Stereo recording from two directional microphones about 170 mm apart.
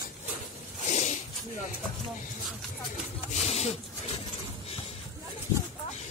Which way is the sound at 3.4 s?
40° left (ahead or behind).